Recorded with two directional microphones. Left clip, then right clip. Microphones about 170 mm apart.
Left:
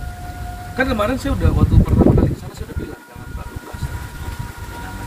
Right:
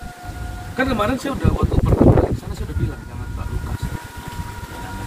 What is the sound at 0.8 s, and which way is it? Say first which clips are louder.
Speech: left 1 dB; 15° left (ahead or behind).